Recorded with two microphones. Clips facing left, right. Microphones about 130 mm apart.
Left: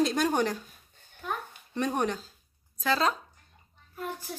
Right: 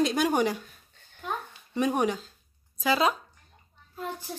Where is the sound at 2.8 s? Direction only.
10° right (ahead or behind).